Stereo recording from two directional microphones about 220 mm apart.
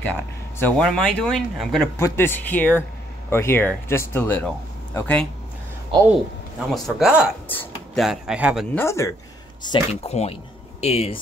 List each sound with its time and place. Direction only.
0.0 s speech: 5° left (ahead or behind)
2.0 s speech: 10° left (ahead or behind)
6.7 s speech: 5° right (ahead or behind)
8.7 s speech: 15° left (ahead or behind)
9.7 s speech: 30° left (ahead or behind)